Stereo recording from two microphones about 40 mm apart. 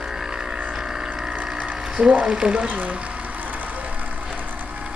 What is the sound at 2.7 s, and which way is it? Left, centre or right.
Speech, right.